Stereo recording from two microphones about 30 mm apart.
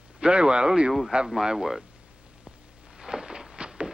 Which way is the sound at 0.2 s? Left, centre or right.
Right.